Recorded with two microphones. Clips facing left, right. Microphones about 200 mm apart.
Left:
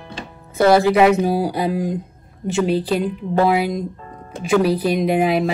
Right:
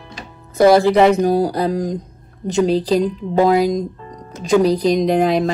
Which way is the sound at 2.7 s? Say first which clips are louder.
Right 3 dB; 35° right (ahead or behind).